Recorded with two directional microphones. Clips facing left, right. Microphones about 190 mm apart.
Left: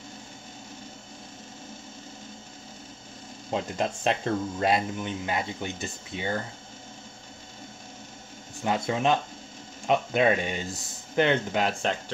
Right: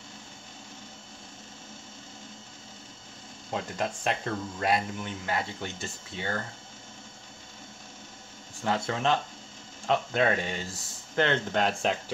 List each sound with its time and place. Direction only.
3.4 s speech: 20° left (ahead or behind)
8.6 s speech: 15° left (ahead or behind); by 12.0 s centre (ahead or behind)